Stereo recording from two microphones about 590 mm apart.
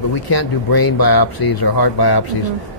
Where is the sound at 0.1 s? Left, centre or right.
Left.